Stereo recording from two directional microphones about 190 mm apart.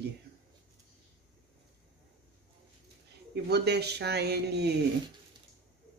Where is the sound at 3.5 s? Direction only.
60° right (ahead or behind).